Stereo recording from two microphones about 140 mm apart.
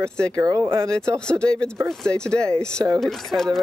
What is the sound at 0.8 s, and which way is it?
Speech, 5° left (ahead or behind).